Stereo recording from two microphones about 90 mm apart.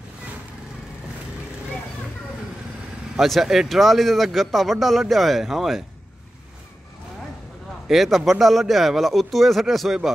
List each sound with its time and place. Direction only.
3.2 s speech: 5° right (ahead or behind)
7.9 s speech: centre (ahead or behind)